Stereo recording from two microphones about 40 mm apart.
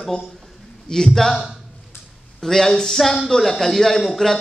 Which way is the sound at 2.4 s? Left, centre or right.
Centre.